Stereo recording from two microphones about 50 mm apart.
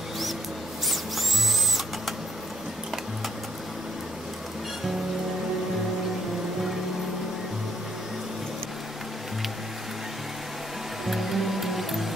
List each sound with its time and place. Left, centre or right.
11.1 s music: centre